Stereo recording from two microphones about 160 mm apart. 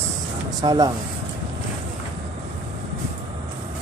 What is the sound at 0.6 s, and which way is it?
Speech, 25° right (ahead or behind).